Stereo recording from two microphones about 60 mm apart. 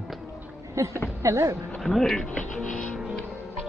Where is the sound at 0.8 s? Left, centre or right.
Right.